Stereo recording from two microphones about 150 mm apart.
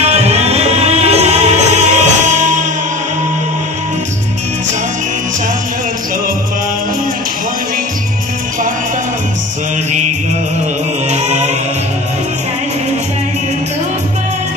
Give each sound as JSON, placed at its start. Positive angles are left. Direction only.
{"t": 0.0, "sound": "music", "side_deg": -45}
{"t": 11.1, "sound": "music", "side_deg": -50}